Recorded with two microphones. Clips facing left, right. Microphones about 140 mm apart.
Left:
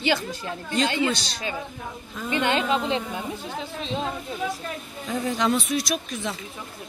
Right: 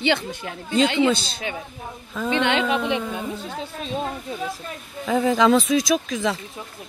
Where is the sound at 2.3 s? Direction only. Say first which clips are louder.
Right 2 dB; 90° right.